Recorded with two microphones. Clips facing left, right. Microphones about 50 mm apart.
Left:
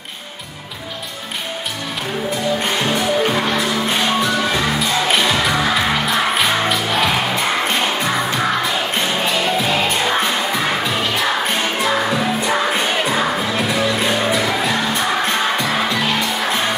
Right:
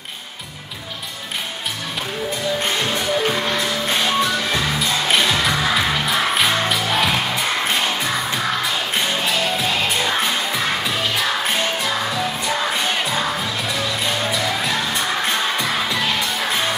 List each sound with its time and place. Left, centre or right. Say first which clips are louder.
4.7 s music: left 2 dB; centre
12.7 s music: left 3 dB; centre